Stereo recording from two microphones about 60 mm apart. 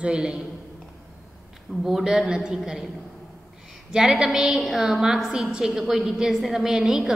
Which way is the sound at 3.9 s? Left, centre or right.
Centre.